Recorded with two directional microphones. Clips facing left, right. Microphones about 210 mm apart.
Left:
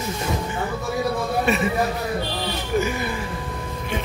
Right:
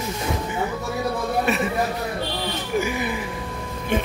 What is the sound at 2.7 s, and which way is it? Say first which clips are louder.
Music: left 1 dB; 15° right (ahead or behind).